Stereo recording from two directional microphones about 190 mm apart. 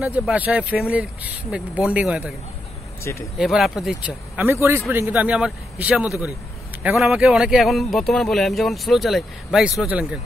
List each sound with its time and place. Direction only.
0.0 s speech: 5° right (ahead or behind)
3.0 s speech: 15° left (ahead or behind)
3.3 s speech: centre (ahead or behind)
4.5 s speech: 15° right (ahead or behind)